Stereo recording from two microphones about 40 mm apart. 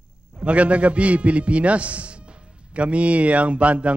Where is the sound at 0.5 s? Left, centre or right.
Right.